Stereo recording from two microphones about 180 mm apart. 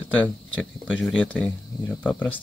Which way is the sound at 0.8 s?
5° left (ahead or behind).